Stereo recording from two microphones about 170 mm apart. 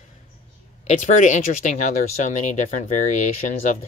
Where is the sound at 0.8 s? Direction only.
45° left (ahead or behind).